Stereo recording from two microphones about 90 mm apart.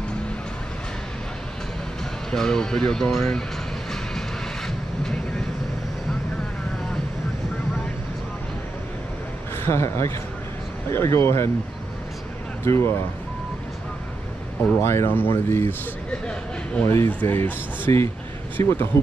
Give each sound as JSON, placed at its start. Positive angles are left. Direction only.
{"t": 2.3, "sound": "speech", "side_deg": 5}
{"t": 4.6, "sound": "vehicle", "side_deg": 5}
{"t": 9.6, "sound": "a man's voice", "side_deg": 30}
{"t": 12.6, "sound": "speech", "side_deg": 25}
{"t": 14.8, "sound": "speech", "side_deg": 25}
{"t": 16.8, "sound": "speech", "side_deg": 30}
{"t": 17.1, "sound": "speech", "side_deg": 20}